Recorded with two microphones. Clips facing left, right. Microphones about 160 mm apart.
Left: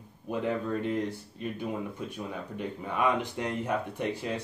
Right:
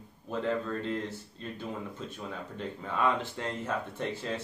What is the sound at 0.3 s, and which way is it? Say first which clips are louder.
Speech: left 1 dB; 15° left (ahead or behind).